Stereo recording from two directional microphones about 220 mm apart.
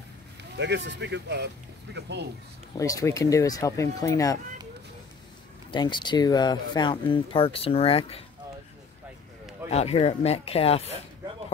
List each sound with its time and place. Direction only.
0.6 s speech: 50° right (ahead or behind)
2.8 s speech: 15° left (ahead or behind)
5.7 s speech: 20° left (ahead or behind)
9.7 s speech: 30° left (ahead or behind)